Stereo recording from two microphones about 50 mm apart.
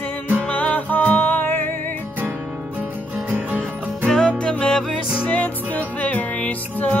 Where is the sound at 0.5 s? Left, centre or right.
Left.